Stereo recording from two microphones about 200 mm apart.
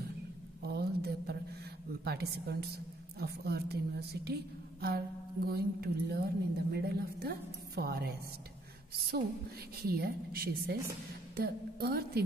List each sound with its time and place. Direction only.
0.6 s a sound: 55° right (ahead or behind)
2.0 s a woman's voice: 55° right (ahead or behind)
9.8 s a woman's voice: 50° right (ahead or behind)